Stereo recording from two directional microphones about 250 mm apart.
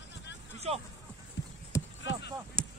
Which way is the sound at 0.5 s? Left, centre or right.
Right.